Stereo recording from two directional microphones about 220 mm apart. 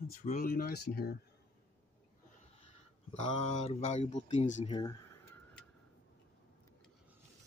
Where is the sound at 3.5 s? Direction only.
30° left (ahead or behind).